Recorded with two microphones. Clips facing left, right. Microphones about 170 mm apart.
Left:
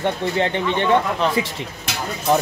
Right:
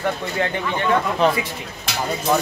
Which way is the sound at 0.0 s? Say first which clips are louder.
Left 2 dB; 25° left (ahead or behind).